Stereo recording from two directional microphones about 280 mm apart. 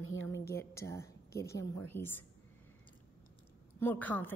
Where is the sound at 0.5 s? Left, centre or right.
Centre.